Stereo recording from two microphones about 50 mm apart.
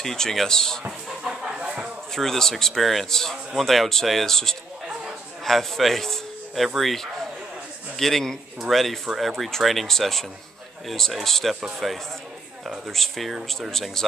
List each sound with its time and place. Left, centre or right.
0.0 s speech: centre
1.0 s a sound: centre
2.1 s a man's voice: centre